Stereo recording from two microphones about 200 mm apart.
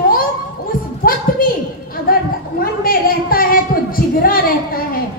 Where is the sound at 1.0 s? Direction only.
45° left (ahead or behind).